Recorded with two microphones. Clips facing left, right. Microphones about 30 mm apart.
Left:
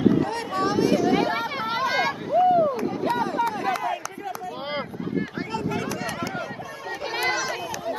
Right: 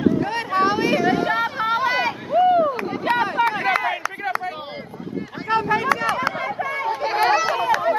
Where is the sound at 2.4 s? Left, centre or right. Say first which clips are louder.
Right 2 dB; right.